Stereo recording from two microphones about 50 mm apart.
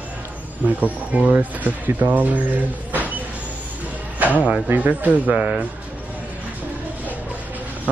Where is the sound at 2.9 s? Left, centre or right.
Right.